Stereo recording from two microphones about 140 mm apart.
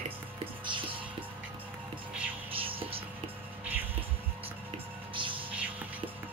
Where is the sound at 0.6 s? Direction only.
35° right (ahead or behind).